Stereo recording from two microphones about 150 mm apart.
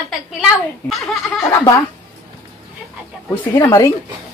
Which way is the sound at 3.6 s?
25° left (ahead or behind).